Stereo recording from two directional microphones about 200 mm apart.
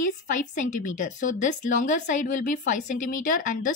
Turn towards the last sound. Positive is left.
turn(degrees=40)  # may be behind; listen again after turning